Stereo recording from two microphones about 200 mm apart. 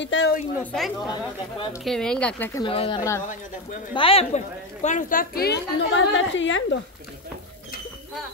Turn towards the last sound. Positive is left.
turn(degrees=70)  # may be behind; listen again after turning